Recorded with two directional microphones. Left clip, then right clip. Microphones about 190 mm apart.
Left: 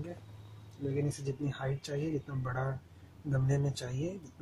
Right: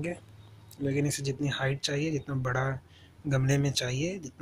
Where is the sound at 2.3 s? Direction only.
20° right (ahead or behind).